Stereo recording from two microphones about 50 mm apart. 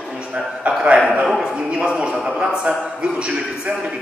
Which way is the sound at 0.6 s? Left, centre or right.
Right.